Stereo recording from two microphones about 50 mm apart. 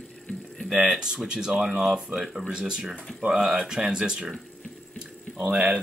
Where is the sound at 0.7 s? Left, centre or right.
Centre.